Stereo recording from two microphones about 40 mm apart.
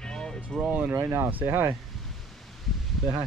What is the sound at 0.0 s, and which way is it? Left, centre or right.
Vehicle, centre.